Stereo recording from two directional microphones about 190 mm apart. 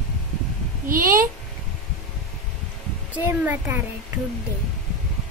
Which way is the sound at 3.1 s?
10° right (ahead or behind).